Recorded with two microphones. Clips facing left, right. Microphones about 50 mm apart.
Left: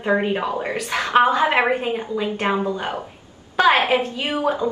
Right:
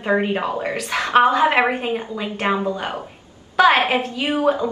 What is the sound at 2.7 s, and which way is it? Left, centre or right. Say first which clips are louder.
Speech: even; centre.